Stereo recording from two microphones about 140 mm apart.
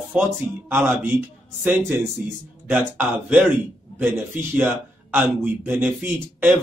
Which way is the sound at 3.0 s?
10° right (ahead or behind).